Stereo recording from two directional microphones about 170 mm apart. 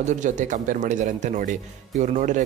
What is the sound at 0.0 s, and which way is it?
A man's voice, 45° right (ahead or behind).